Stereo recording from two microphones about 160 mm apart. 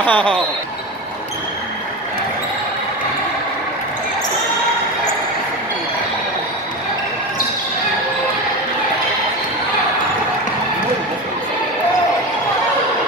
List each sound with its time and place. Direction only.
0.0 s speech: 10° left (ahead or behind)